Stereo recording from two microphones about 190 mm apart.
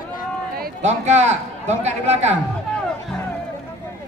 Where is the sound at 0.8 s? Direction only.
35° right (ahead or behind).